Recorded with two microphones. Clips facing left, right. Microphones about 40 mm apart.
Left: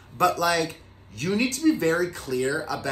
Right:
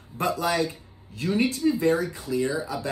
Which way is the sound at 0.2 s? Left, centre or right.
Left.